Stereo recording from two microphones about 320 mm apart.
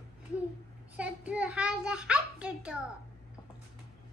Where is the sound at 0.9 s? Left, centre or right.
Centre.